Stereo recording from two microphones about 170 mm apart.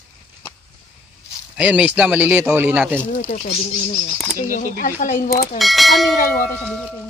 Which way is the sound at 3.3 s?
45° left (ahead or behind).